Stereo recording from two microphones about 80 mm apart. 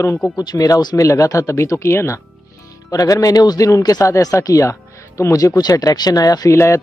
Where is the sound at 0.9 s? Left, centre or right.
Left.